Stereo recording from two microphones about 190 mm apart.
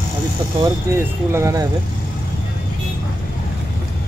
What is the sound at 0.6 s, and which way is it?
Speech, 15° right (ahead or behind).